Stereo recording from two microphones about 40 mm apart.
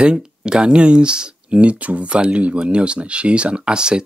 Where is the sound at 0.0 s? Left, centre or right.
Right.